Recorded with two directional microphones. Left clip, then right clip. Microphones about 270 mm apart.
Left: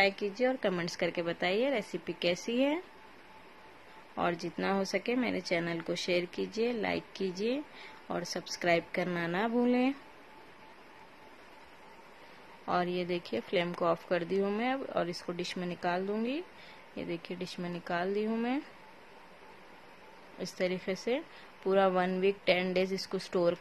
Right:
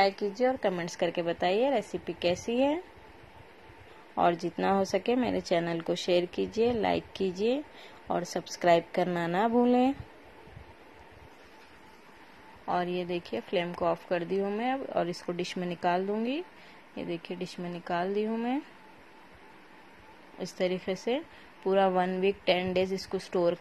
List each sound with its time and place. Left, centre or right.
0.3 s a woman's voice: centre
4.1 s speech: centre
12.6 s speech: centre
20.3 s speech: centre